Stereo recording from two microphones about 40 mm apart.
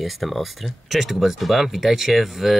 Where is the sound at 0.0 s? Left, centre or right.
Centre.